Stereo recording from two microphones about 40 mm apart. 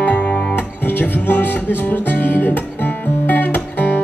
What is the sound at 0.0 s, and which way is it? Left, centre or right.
Music, left.